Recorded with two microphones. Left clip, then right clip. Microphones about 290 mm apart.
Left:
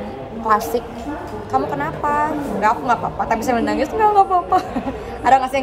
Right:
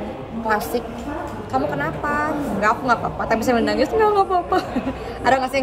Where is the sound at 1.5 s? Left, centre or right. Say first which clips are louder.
Left 2 dB; centre.